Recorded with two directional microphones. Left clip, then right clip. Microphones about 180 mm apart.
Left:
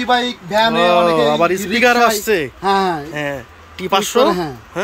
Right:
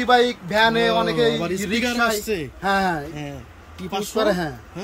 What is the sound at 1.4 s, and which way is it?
A man's voice, 5° right (ahead or behind).